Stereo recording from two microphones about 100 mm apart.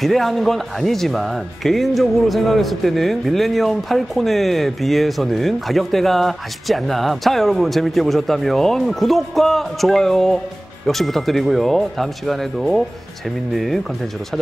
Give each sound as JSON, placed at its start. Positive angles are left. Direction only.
{"t": 0.0, "sound": "speech", "side_deg": 0}